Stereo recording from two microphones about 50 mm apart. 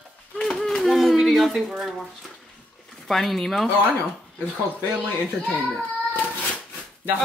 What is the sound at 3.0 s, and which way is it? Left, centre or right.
Speech, centre.